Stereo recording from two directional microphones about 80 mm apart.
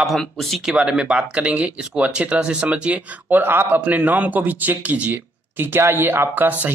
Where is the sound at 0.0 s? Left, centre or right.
Centre.